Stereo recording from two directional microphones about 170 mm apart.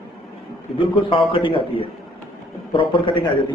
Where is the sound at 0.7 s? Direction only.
30° left (ahead or behind).